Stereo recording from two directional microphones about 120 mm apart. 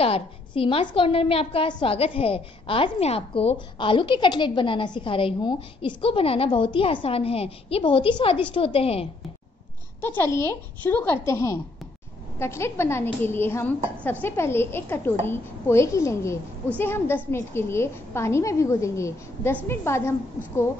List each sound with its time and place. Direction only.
0.0 s a woman's voice: 50° left (ahead or behind)
10.0 s a woman's voice: 20° left (ahead or behind)